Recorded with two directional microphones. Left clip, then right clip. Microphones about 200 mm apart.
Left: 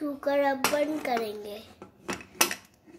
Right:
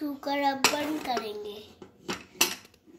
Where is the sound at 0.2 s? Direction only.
15° left (ahead or behind).